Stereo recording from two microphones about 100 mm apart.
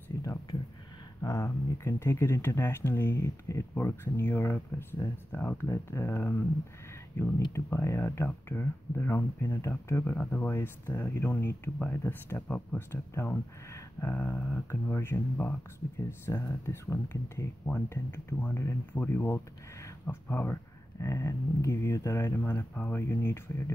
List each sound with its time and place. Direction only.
0.2 s a sound: 35° left (ahead or behind)
1.2 s speech: 35° left (ahead or behind)
5.3 s speech: 20° left (ahead or behind)
7.5 s speech: 30° left (ahead or behind)
13.7 s a sound: 30° left (ahead or behind)
14.1 s speech: 15° left (ahead or behind)